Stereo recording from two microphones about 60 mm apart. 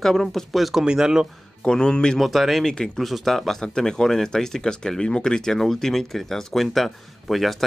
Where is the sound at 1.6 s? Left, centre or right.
Centre.